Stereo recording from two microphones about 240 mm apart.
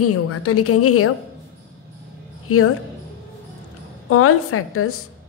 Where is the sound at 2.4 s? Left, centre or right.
Left.